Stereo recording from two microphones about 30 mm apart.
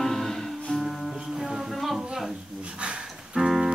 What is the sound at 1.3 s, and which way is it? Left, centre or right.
Music, centre.